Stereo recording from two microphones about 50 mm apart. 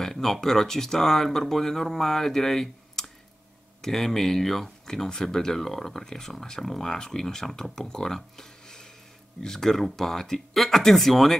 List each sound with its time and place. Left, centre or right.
0.0 s speech: centre